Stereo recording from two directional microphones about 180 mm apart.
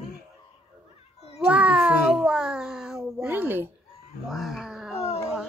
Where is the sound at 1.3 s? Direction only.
5° right (ahead or behind).